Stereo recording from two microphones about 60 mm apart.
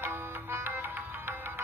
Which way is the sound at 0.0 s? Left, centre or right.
Right.